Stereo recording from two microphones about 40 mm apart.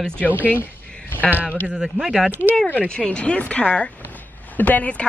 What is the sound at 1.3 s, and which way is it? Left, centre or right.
Speech, right.